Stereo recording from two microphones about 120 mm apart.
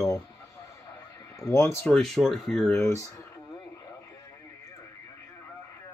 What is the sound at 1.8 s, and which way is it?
Speech, 5° left (ahead or behind).